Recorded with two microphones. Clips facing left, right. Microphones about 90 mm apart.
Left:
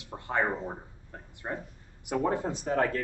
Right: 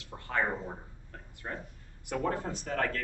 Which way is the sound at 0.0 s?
20° left (ahead or behind).